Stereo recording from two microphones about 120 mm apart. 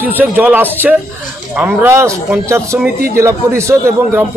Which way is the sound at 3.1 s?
25° right (ahead or behind).